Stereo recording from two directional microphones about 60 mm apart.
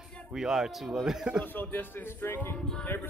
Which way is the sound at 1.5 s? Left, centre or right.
Left.